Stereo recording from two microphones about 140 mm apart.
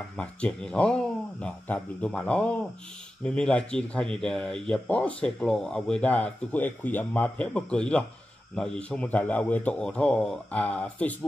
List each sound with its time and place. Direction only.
0.2 s speech: 10° left (ahead or behind)